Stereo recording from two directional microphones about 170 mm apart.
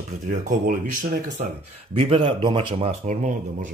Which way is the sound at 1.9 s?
30° right (ahead or behind).